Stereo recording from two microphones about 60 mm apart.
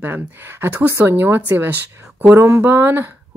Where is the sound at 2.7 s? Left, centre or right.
Right.